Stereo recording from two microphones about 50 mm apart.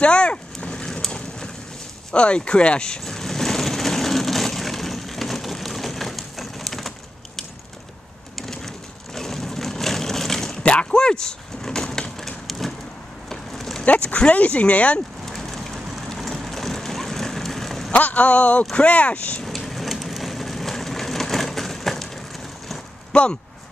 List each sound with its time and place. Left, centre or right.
0.0 s vehicle: left
2.1 s vehicle: left; by 6.9 s centre
8.4 s crushing: centre
10.6 s a sound: left; by 13.8 s centre
13.8 s a sound: left
15.2 s vehicle: centre
17.9 s a man's voice: left
19.4 s vehicle: centre
23.1 s a sound: left